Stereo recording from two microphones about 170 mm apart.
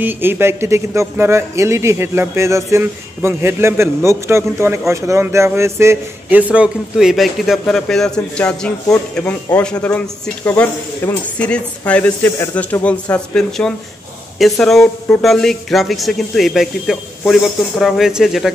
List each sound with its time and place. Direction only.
0.0 s speech: 15° right (ahead or behind)